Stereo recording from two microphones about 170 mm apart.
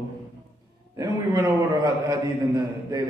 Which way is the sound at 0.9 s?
20° right (ahead or behind).